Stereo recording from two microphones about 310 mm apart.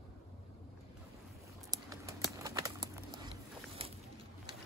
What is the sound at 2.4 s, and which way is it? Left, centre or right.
Bird, centre.